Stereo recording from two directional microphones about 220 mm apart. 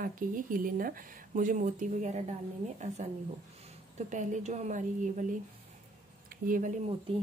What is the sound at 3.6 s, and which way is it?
A woman's voice, 35° right (ahead or behind).